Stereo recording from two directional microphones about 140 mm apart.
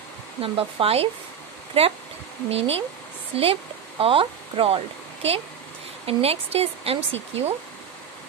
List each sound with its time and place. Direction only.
0.4 s speech: 40° right (ahead or behind)
2.5 s speech: 45° right (ahead or behind)